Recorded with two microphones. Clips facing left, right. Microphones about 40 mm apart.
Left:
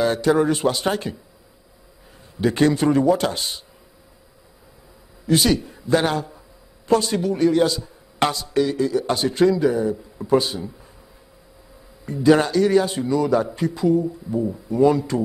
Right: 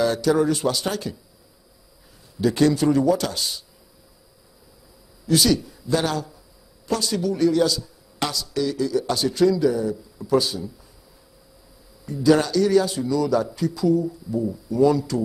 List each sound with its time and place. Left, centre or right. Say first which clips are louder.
0.0 s a man's voice: left 1 dB; left
2.4 s a man's voice: left 1 dB; left
5.2 s a man's voice: left 1 dB; left
12.1 s a man's voice: left 2 dB; left